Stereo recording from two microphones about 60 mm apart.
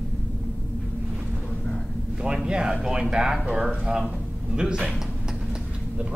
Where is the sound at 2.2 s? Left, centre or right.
Centre.